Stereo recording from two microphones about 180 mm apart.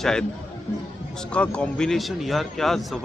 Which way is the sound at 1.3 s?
5° left (ahead or behind).